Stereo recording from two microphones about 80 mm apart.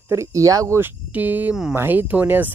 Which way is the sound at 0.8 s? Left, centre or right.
Right.